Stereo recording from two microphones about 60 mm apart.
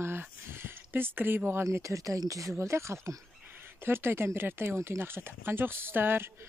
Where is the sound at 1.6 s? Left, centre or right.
Right.